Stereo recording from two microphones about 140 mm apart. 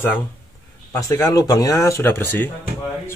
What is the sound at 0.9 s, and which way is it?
Speech, 25° left (ahead or behind).